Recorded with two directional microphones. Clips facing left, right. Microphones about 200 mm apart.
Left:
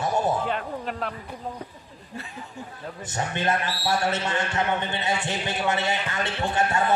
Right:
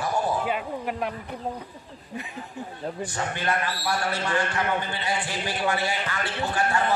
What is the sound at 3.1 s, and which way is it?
A man's voice, 25° left (ahead or behind).